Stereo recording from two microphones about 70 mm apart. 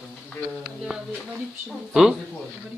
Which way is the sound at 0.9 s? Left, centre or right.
Centre.